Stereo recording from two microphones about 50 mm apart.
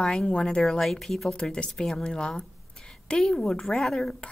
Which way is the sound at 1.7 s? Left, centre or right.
Centre.